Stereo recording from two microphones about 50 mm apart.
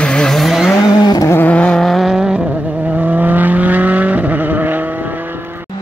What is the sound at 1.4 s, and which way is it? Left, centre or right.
Vehicle, left.